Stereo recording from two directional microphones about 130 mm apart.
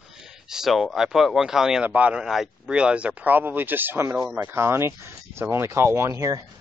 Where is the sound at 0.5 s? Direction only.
Centre (ahead or behind); by 6.4 s 25° right (ahead or behind).